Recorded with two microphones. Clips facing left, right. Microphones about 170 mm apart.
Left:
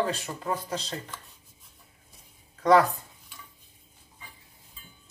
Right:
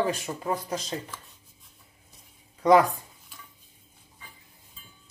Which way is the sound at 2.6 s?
15° right (ahead or behind).